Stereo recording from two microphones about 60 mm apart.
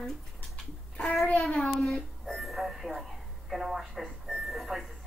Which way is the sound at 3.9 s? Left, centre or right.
Centre.